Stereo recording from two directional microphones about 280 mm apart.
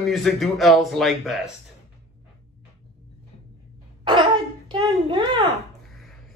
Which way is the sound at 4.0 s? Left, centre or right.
Centre.